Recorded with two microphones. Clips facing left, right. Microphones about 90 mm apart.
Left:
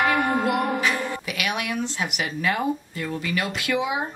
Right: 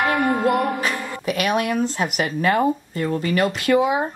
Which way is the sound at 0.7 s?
40° right (ahead or behind).